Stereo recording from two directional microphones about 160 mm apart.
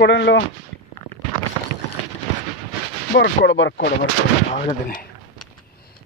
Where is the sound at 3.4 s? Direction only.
85° left.